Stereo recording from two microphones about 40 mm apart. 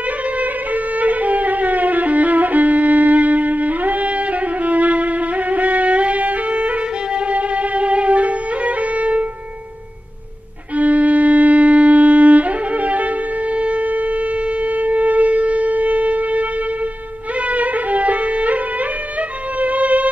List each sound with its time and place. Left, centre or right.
0.9 s violin: right
10.8 s music: right
17.5 s music: right
19.6 s music: right